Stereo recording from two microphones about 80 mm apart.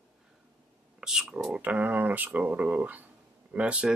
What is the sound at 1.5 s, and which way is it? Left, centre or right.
Speech, centre.